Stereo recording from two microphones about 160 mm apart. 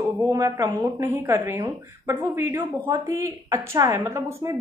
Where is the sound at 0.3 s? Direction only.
20° right (ahead or behind).